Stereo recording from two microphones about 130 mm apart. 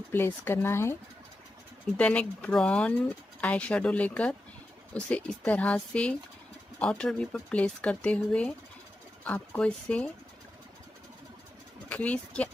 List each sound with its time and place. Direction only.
0.1 s speech: 15° left (ahead or behind)
2.0 s speech: 10° left (ahead or behind)
11.9 s speech: 10° left (ahead or behind)